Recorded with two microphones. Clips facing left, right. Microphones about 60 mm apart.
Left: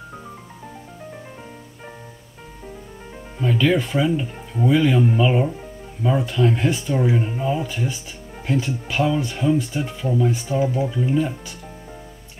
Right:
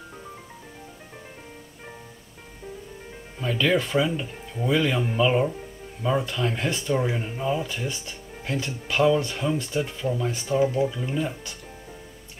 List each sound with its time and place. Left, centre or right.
3.3 s speech: centre